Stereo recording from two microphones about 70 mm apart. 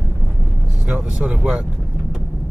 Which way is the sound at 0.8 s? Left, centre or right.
Centre.